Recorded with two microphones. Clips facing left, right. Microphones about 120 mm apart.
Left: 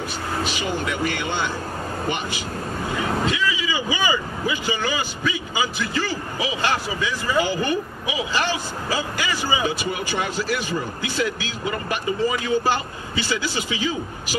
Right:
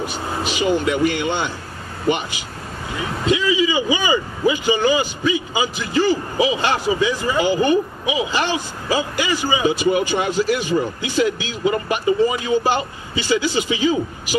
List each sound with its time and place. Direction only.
0.0 s a man's voice: 20° right (ahead or behind)